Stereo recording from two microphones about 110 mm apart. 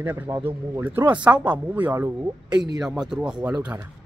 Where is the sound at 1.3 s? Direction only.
15° right (ahead or behind).